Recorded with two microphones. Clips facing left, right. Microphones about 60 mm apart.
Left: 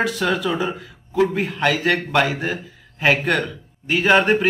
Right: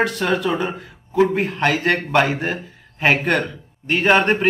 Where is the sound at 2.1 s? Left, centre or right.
Centre.